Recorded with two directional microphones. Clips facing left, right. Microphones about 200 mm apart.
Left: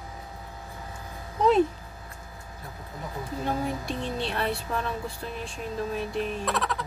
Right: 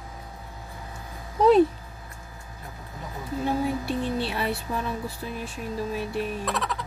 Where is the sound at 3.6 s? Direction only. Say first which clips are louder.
Right 4 dB; 5° right (ahead or behind).